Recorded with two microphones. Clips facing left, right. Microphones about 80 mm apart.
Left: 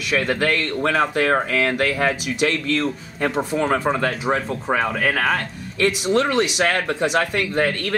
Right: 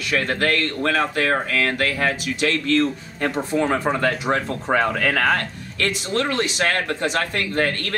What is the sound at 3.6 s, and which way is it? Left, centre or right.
Speech, left.